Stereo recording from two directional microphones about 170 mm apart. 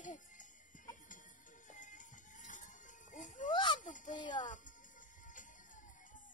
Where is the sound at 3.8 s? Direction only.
50° left (ahead or behind).